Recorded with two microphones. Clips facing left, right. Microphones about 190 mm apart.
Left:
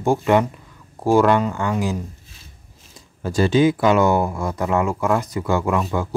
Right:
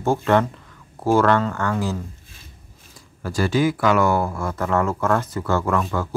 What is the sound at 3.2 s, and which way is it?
Speech, 20° left (ahead or behind).